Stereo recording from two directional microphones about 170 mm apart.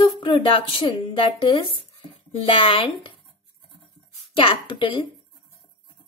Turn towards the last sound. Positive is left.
turn(degrees=30)  # may be behind; listen again after turning